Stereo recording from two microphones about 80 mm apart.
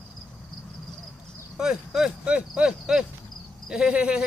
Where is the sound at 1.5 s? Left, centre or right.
Centre.